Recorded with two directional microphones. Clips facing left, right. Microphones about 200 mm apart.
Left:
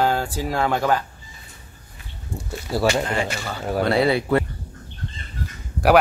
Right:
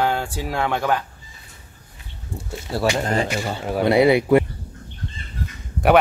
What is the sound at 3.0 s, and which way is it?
Speech, 40° right (ahead or behind).